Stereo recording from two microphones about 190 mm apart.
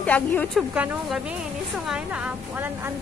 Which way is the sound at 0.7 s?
5° right (ahead or behind).